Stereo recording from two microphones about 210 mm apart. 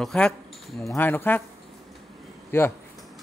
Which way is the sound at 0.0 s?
5° left (ahead or behind).